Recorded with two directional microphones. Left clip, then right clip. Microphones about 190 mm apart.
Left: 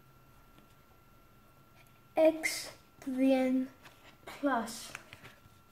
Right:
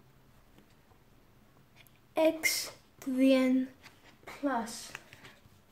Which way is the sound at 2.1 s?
20° right (ahead or behind).